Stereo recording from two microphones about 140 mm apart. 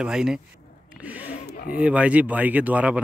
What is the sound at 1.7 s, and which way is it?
Speech, 10° right (ahead or behind).